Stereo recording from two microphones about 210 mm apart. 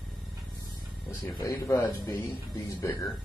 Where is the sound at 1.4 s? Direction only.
15° left (ahead or behind).